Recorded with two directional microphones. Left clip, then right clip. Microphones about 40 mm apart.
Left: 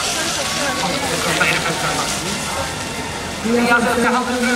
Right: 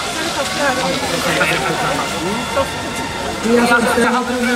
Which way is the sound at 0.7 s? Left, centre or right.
Left.